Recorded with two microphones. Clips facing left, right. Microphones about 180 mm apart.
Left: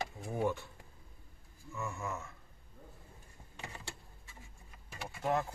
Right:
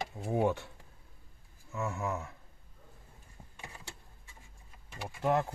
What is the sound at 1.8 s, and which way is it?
Speech, 75° right (ahead or behind).